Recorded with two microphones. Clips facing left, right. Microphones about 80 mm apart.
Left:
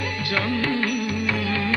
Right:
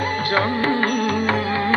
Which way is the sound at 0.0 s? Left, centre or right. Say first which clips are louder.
Right 6 dB; right.